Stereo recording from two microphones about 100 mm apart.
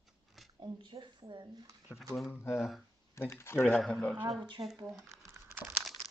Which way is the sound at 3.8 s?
5° left (ahead or behind).